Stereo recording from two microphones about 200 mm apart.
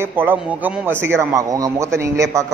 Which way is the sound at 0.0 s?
10° right (ahead or behind).